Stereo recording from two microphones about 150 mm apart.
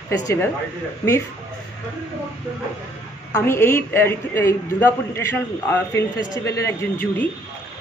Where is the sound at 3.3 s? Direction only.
15° left (ahead or behind).